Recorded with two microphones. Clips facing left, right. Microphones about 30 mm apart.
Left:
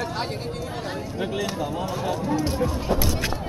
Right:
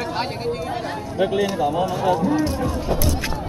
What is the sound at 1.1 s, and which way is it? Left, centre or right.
Speech, centre.